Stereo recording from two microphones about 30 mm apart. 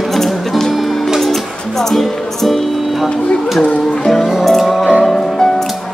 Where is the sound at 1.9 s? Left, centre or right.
Centre.